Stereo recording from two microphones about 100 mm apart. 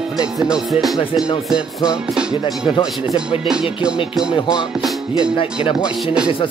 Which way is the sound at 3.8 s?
10° right (ahead or behind).